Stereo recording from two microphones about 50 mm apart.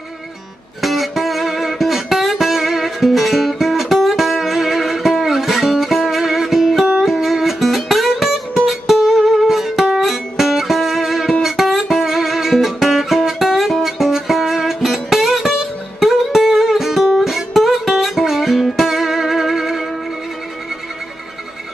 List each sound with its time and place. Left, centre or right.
0.7 s music: centre
11.4 s guitar: centre